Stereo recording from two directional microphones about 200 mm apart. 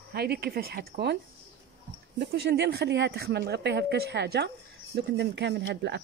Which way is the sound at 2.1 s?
55° right (ahead or behind).